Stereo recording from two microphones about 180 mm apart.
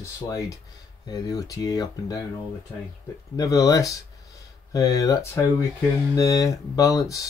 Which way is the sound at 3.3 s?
20° left (ahead or behind).